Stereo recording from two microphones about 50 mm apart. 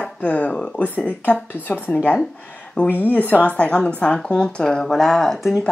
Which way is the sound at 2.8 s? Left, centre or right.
Left.